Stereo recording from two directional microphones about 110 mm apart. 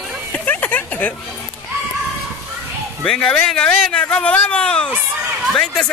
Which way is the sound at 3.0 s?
10° left (ahead or behind).